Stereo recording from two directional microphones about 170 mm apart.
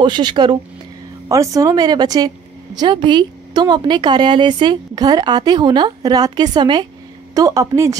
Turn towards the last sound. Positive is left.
turn(degrees=-20)  # may be behind; listen again after turning